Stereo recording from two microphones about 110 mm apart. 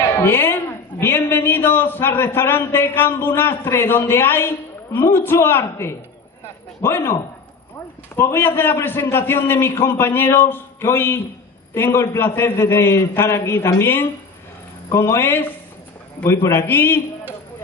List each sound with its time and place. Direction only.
0.2 s a man's voice: 25° left (ahead or behind)
8.2 s a man's voice: 20° left (ahead or behind)